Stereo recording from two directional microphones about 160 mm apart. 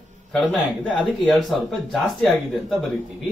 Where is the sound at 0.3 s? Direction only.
5° left (ahead or behind).